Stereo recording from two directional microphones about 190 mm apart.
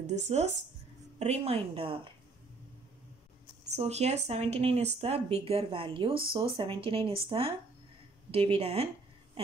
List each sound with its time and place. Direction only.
1.2 s speech: 35° right (ahead or behind)
3.7 s speech: 35° right (ahead or behind)